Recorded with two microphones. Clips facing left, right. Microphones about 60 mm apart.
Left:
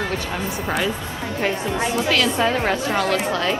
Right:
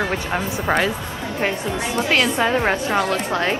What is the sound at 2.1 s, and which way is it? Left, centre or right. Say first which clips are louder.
A woman's voice: right 2 dB; right.